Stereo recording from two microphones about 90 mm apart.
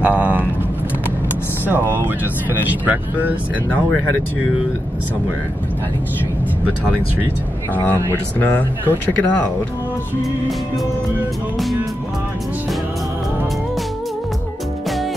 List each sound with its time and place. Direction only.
0.0 s vehicle: 20° right (ahead or behind)
1.7 s speech: 25° right (ahead or behind)
7.7 s speech: 20° left (ahead or behind)